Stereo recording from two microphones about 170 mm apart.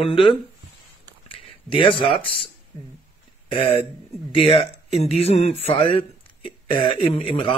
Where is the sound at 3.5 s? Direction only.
35° left (ahead or behind).